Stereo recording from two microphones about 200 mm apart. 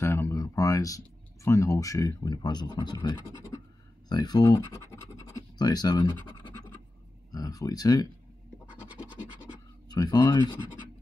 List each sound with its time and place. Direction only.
0.0 s speech: 15° left (ahead or behind)
7.3 s speech: 20° left (ahead or behind)
9.1 s scratch: 20° left (ahead or behind)